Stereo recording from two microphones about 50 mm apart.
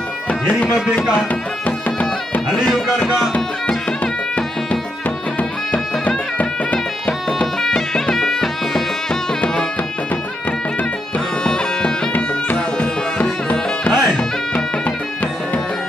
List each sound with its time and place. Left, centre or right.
1.9 s music: left
2.5 s music: centre
3.3 s music: left
7.1 s music: centre
11.1 s music: centre